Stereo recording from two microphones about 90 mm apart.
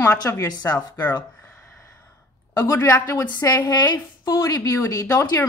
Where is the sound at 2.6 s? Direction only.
35° left (ahead or behind).